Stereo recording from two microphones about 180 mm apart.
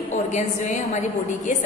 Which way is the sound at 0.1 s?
40° left (ahead or behind).